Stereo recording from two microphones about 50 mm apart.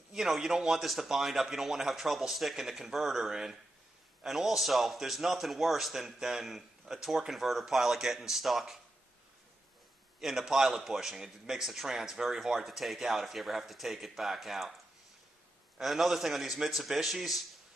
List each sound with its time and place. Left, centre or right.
0.1 s a man's voice: centre
10.2 s a man's voice: centre
15.8 s a man's voice: centre